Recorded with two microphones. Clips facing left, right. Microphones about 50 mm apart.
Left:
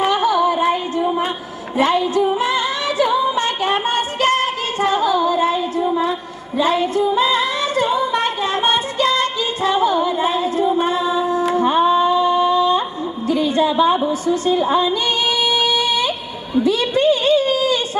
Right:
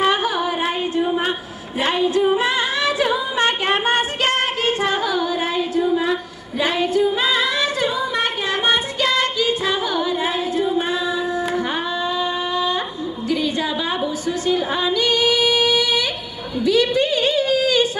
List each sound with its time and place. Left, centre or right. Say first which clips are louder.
0.1 s music: left 4 dB; right
0.9 s a sound: left 1 dB; right
2.1 s singing: even; right
6.6 s female singing: left 3 dB; right
6.9 s female singing: left 2 dB; left
7.3 s music: left 2 dB; left
9.1 s singing: even; left
11.5 s music: left 8 dB; left
13.9 s a sound: left 4 dB; left
15.0 s singing: right 1 dB; left
16.5 s a sound: left 1 dB; left